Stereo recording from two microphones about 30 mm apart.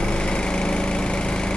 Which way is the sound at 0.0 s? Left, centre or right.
Left.